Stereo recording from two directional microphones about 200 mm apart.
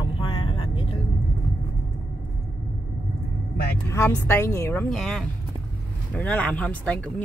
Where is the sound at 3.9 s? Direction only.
15° left (ahead or behind).